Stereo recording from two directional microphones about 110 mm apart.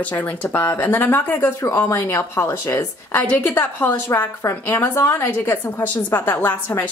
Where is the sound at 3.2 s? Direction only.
15° left (ahead or behind).